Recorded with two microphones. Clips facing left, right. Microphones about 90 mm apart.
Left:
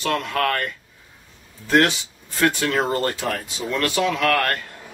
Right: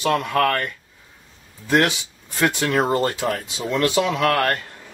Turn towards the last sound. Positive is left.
turn(degrees=-25)  # may be behind; listen again after turning